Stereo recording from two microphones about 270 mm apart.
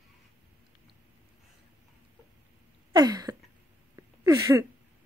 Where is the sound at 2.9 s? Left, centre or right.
Centre.